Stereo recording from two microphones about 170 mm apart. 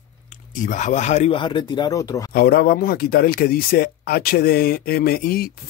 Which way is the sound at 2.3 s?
60° left (ahead or behind).